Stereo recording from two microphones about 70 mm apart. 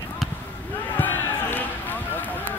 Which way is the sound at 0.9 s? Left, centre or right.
Left.